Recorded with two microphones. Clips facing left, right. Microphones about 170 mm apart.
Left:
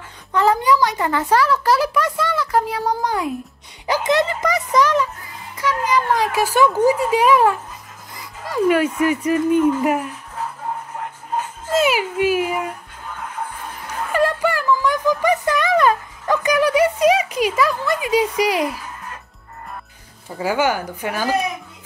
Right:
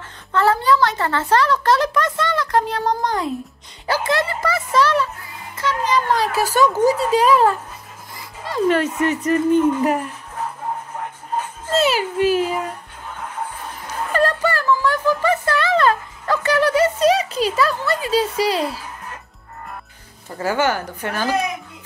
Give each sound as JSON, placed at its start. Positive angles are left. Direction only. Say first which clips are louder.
{"t": 0.3, "sound": "a child's voice", "louder": "even", "side_deg": 15}
{"t": 11.7, "sound": "a child's voice", "louder": "even", "side_deg": 10}
{"t": 14.1, "sound": "a sound", "louder": "even", "side_deg": 10}
{"t": 20.3, "sound": "a child's voice", "louder": "even", "side_deg": 10}